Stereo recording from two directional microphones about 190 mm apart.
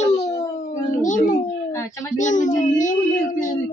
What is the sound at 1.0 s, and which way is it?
Speech, 45° left (ahead or behind).